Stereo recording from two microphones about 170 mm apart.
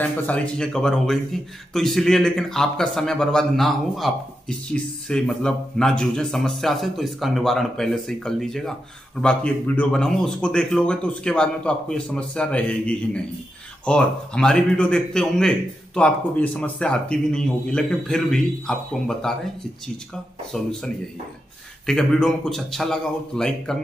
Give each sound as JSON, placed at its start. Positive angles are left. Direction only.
{"t": 0.0, "sound": "a man's voice", "side_deg": 10}
{"t": 20.5, "sound": "a man's voice", "side_deg": 5}
{"t": 21.8, "sound": "a man's voice", "side_deg": 5}